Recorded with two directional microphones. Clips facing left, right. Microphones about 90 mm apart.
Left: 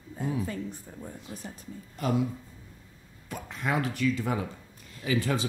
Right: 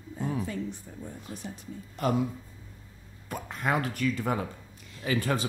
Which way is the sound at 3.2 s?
45° right (ahead or behind).